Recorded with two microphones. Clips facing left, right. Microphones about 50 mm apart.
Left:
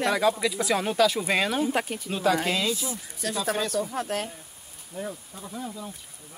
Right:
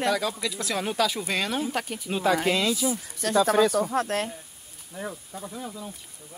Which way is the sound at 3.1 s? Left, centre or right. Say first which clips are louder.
Right 7 dB; right.